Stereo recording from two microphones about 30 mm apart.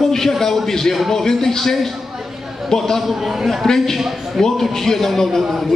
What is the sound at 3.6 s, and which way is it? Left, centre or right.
A man's voice, centre.